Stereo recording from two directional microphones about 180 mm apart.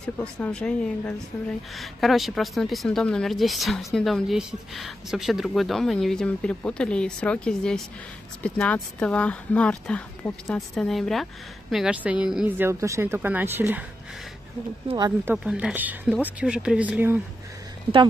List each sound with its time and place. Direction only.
0.0 s speech: 5° left (ahead or behind)
15.0 s speech: 20° right (ahead or behind)
15.3 s speech: 5° right (ahead or behind)